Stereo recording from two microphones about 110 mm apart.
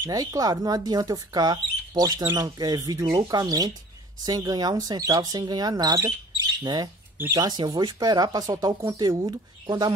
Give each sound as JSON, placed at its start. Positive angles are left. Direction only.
{"t": 0.0, "sound": "speech", "side_deg": -30}